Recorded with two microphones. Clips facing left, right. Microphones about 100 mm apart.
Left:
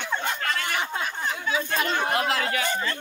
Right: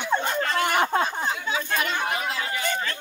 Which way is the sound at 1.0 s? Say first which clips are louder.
Right 2 dB; 25° right (ahead or behind).